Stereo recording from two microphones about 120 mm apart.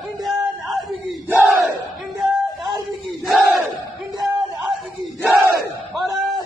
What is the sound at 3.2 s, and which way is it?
Battle cry, centre (ahead or behind).